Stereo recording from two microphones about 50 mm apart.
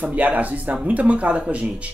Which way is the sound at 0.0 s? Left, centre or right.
Right.